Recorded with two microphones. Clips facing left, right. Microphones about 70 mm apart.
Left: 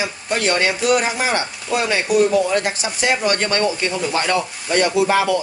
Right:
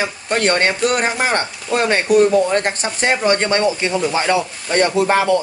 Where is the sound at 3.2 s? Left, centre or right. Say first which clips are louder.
Right 3 dB; right.